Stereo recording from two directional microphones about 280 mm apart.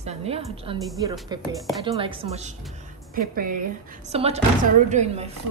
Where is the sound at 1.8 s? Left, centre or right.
Centre.